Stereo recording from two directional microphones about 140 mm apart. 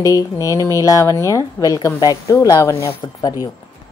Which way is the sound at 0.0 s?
25° left (ahead or behind).